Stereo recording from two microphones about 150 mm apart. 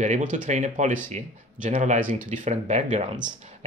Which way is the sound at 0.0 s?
55° right (ahead or behind).